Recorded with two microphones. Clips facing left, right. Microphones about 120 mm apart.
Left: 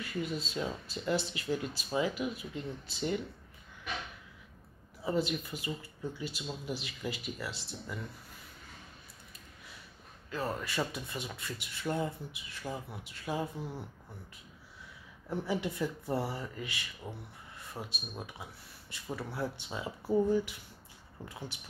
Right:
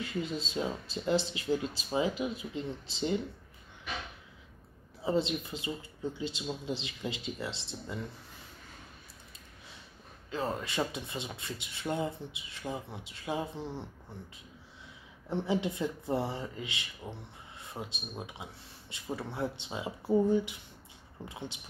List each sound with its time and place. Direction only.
0.0 s speech: 25° right (ahead or behind)
5.0 s speech: 25° right (ahead or behind)
10.3 s speech: 25° right (ahead or behind)
15.2 s speech: 25° right (ahead or behind)